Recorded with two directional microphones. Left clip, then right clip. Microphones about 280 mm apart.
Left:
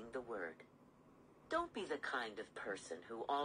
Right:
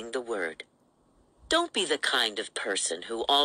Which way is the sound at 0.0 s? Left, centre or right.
Right.